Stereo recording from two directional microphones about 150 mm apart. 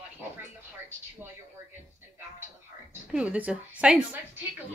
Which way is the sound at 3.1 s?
5° right (ahead or behind).